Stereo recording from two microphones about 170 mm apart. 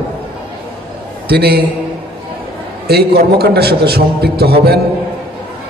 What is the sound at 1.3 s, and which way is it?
Speech, 70° right (ahead or behind).